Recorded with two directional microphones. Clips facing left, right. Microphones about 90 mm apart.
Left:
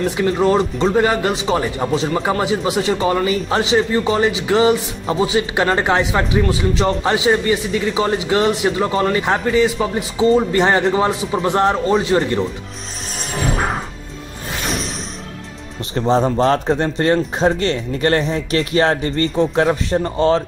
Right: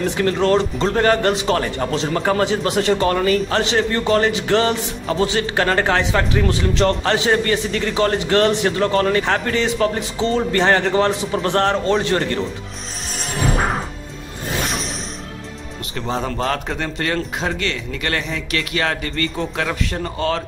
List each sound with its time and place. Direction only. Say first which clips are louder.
0.0 s a man's voice: left 2 dB; 10° left (ahead or behind)
6.4 s a man's voice: even; 5° left (ahead or behind)
15.9 s a man's voice: left 8 dB; 35° left (ahead or behind)